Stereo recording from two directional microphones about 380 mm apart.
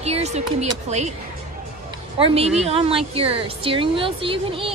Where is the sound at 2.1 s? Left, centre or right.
Centre.